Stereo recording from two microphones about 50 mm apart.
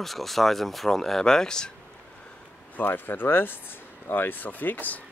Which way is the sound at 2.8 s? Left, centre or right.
Left.